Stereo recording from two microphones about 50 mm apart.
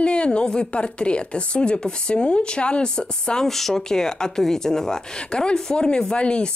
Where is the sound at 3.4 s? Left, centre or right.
Centre.